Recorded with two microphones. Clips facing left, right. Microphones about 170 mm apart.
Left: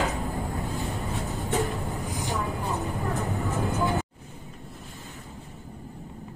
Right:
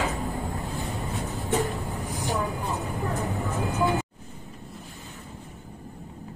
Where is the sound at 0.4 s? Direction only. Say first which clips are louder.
Left 1 dB; centre (ahead or behind).